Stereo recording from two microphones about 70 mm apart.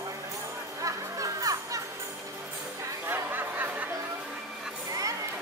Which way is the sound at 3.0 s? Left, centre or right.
Right.